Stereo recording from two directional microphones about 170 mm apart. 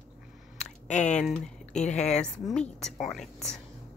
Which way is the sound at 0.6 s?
45° left (ahead or behind).